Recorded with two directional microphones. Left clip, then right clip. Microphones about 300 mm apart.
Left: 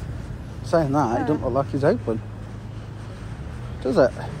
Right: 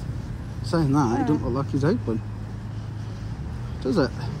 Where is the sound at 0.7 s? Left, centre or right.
Centre.